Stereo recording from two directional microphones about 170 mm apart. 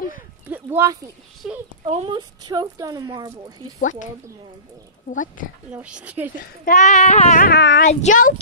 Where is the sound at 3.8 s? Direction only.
50° left (ahead or behind).